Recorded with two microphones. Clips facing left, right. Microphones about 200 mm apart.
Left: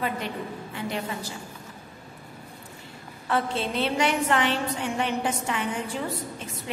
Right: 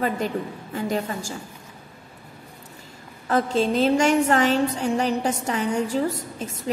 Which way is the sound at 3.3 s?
40° right (ahead or behind).